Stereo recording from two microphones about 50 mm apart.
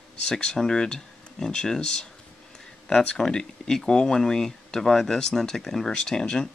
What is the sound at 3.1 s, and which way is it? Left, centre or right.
Speech, centre.